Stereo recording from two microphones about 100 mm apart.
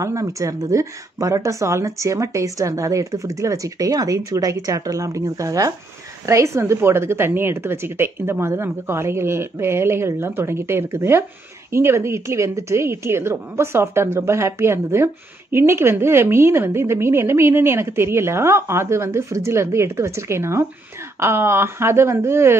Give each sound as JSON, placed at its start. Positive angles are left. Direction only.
{"t": 0.0, "sound": "a woman's voice", "side_deg": -30}